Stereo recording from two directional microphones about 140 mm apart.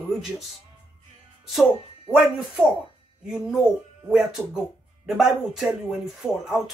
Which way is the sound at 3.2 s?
5° right (ahead or behind).